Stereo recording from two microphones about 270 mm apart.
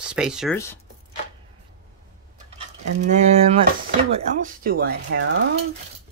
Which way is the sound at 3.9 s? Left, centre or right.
Right.